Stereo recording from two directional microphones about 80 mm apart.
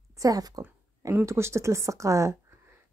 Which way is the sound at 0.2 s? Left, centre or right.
Right.